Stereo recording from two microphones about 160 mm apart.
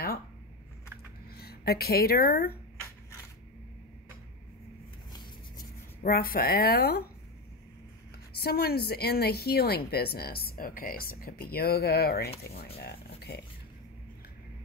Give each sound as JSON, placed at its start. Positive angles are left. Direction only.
{"t": 1.3, "sound": "speech", "side_deg": 80}
{"t": 6.0, "sound": "a woman's voice", "side_deg": 70}
{"t": 8.4, "sound": "a woman's voice", "side_deg": 80}